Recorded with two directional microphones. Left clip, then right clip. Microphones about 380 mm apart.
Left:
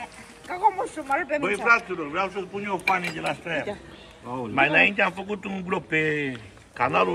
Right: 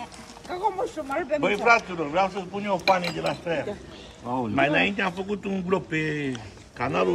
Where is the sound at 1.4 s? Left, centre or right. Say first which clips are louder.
Right 2 dB; centre.